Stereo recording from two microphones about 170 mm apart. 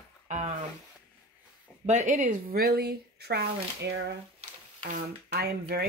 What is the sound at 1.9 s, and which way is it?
Speech, 45° right (ahead or behind).